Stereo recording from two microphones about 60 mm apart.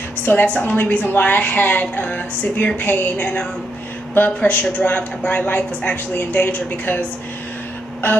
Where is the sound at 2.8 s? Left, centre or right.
Left.